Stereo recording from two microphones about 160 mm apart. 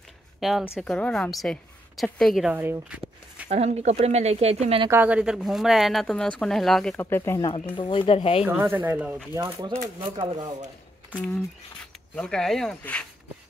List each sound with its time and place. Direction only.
0.4 s speech: centre (ahead or behind)
2.5 s speech: 10° right (ahead or behind)
3.4 s speech: 40° right (ahead or behind)
4.9 s speech: 10° right (ahead or behind)
7.1 s speech: 15° left (ahead or behind)
7.4 s speech: 30° left (ahead or behind)
8.5 s speech: 15° right (ahead or behind); by 10.5 s 30° right (ahead or behind)
12.2 s speech: 5° left (ahead or behind)